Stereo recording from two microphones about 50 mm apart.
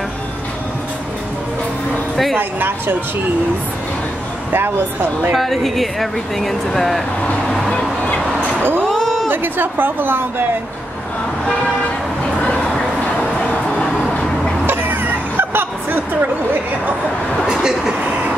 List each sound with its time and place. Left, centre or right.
2.3 s a woman's voice: right
5.3 s speech: centre
7.4 s vehicle: centre
8.5 s speech: right
8.8 s a sound: centre
9.3 s a woman's voice: right
12.6 s a sound: centre
13.4 s vehicle: left
14.7 s a sound: right